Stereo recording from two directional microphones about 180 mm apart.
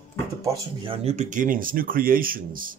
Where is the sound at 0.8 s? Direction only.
30° right (ahead or behind); by 2.7 s 50° right (ahead or behind).